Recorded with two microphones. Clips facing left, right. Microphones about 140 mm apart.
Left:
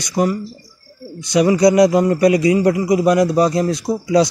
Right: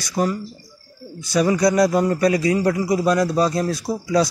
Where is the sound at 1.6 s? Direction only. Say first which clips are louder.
Left 6 dB; 20° left (ahead or behind).